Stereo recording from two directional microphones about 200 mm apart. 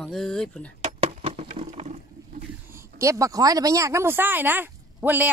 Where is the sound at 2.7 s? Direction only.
15° right (ahead or behind).